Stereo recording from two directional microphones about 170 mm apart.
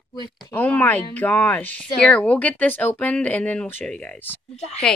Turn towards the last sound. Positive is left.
turn(degrees=40)  # may be behind; listen again after turning